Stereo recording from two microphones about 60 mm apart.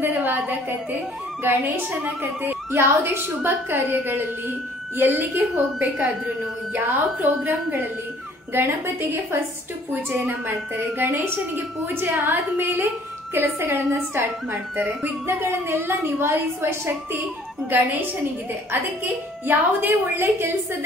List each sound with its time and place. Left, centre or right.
0.0 s a sound: right
1.4 s a woman's voice: right
10.1 s a woman's voice: right
14.8 s a woman's voice: right
15.7 s a woman's voice: right
19.4 s a woman's voice: right